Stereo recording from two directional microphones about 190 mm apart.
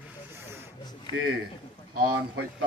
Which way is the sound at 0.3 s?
10° right (ahead or behind).